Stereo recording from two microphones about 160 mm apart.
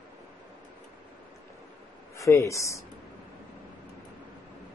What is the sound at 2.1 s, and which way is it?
Speech, 20° left (ahead or behind).